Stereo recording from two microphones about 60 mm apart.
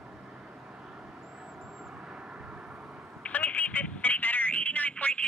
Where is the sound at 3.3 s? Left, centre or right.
Left.